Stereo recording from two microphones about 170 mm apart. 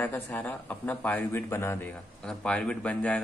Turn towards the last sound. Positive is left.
turn(degrees=5)  # may be behind; listen again after turning